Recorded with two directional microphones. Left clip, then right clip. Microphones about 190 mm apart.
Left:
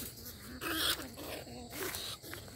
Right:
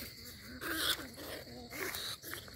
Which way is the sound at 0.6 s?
25° right (ahead or behind).